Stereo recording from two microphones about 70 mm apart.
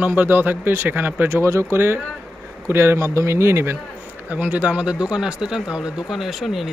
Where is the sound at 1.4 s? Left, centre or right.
Right.